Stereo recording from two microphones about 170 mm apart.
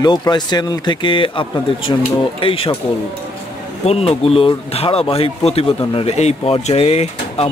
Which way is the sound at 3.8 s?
35° left (ahead or behind).